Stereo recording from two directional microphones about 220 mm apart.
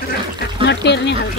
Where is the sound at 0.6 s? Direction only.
50° left (ahead or behind).